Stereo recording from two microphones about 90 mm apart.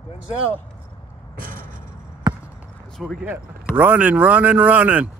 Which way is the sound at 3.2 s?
20° right (ahead or behind).